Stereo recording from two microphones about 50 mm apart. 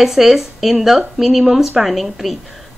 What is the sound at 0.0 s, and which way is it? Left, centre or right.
Speech, centre.